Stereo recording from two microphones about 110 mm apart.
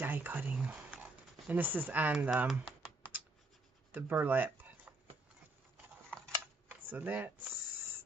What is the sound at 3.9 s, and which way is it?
Speech, 15° right (ahead or behind).